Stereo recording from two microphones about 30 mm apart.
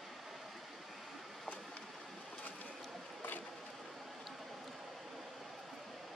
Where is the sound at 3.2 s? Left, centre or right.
Left.